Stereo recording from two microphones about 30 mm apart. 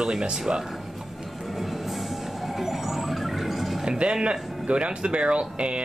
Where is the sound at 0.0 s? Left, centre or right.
Right.